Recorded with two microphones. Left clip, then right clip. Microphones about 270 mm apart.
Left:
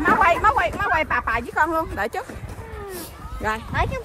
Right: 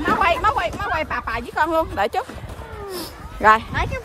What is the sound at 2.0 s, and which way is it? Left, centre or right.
Speech, centre.